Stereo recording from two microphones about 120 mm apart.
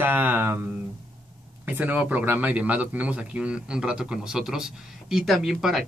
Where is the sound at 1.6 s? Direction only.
15° right (ahead or behind).